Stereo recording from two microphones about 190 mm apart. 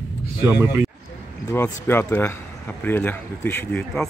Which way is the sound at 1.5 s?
10° left (ahead or behind).